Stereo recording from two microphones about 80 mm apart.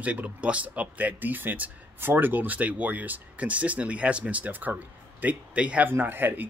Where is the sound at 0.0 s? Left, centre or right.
Centre.